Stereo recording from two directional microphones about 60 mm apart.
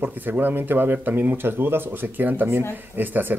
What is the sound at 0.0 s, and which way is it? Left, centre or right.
Speech, right.